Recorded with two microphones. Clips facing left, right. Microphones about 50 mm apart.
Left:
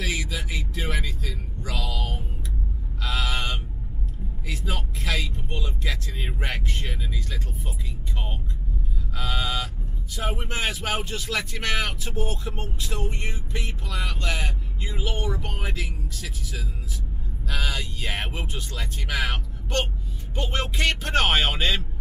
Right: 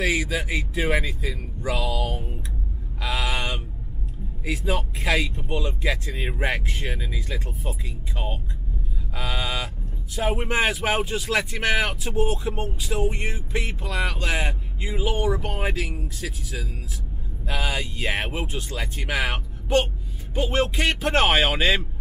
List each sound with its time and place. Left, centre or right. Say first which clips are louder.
0.3 s speech: right 6 dB; right; by 2.2 s centre
3.0 s a sound: right 2 dB; centre
4.5 s speech: right 7 dB; centre
9.1 s speech: even; centre
15.5 s speech: right 5 dB; right
17.5 s speech: right 3 dB; centre
18.2 s speech: right 4 dB; centre